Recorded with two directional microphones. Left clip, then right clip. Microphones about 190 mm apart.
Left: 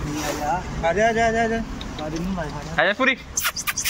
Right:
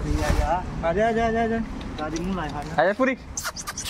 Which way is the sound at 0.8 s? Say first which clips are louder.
Left 4 dB; 50° right (ahead or behind).